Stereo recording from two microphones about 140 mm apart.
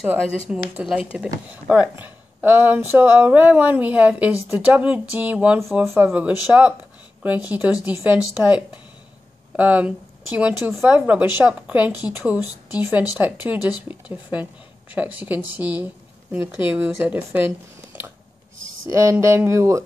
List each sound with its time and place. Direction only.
0.0 s a woman's voice: 10° right (ahead or behind)
9.6 s a woman's voice: 10° right (ahead or behind)
18.9 s speech: 20° right (ahead or behind)